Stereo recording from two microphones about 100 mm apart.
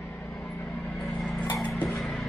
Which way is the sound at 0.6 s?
5° left (ahead or behind).